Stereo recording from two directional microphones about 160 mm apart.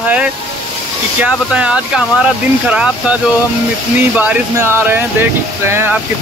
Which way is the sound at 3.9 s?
10° right (ahead or behind).